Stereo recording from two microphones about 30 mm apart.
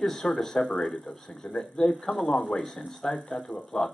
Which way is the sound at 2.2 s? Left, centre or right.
Centre.